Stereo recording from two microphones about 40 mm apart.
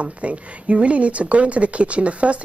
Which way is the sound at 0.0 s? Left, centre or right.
Right.